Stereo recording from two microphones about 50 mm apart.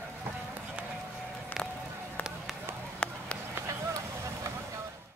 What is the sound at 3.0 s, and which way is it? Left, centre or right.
Run, centre.